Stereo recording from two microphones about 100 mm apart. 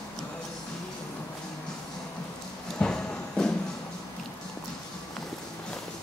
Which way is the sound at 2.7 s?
10° left (ahead or behind).